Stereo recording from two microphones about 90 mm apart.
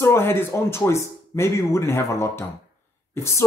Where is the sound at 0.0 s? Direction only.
30° left (ahead or behind).